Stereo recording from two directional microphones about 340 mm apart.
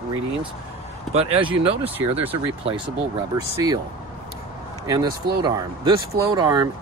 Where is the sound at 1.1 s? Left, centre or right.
Centre.